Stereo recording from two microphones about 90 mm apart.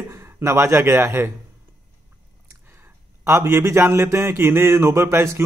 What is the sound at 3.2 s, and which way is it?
Speech, 30° right (ahead or behind).